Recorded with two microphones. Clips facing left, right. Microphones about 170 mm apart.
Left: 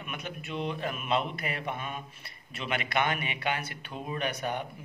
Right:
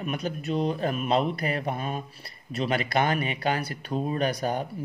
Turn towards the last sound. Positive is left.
turn(degrees=-35)  # may be behind; listen again after turning